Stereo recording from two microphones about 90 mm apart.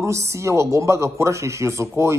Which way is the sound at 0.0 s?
35° right (ahead or behind).